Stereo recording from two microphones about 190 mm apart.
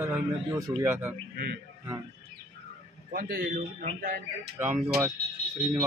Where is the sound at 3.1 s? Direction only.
50° right (ahead or behind).